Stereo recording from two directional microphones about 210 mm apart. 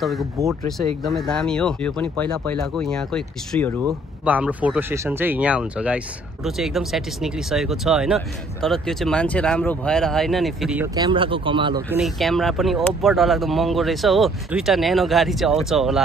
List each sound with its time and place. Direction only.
0.0 s speech: centre (ahead or behind)
11.0 s speech: 25° right (ahead or behind)
11.9 s speech: centre (ahead or behind)